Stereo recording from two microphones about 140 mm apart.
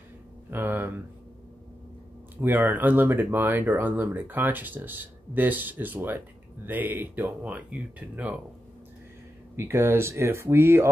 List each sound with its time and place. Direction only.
0.5 s speech: 15° right (ahead or behind)
2.4 s speech: 15° right (ahead or behind)
9.6 s speech: 20° right (ahead or behind)